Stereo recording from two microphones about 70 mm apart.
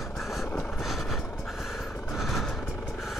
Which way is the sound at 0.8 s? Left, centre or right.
Centre.